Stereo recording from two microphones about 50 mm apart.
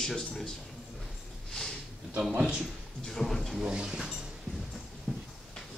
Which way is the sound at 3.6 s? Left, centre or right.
Centre.